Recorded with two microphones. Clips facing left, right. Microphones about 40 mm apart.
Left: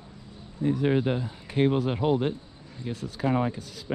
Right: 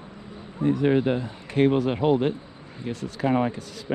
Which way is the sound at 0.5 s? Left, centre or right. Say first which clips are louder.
Right 3 dB; right.